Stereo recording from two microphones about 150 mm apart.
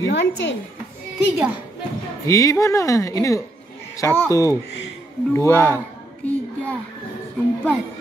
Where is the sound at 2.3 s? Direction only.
20° left (ahead or behind).